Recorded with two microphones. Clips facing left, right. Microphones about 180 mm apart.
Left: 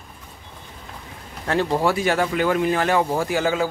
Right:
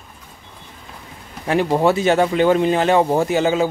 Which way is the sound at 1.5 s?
20° right (ahead or behind).